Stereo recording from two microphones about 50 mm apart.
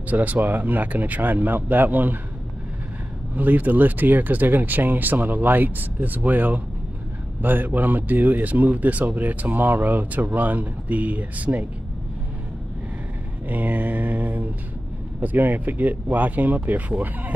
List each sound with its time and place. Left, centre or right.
0.1 s a man's voice: right
3.3 s a man's voice: right
13.5 s a man's voice: right